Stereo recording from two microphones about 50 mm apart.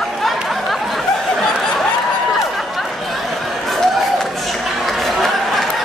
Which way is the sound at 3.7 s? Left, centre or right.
Centre.